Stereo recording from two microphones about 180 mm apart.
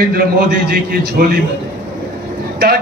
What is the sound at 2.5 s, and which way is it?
Speech, 60° right (ahead or behind).